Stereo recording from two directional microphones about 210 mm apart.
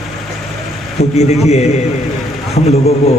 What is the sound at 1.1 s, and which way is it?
Chant, 30° left (ahead or behind).